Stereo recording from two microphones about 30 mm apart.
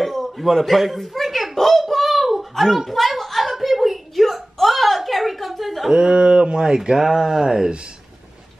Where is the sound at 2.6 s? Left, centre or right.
Centre.